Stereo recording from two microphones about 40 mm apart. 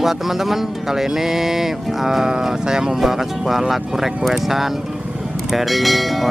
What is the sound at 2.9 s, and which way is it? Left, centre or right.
Speech, centre.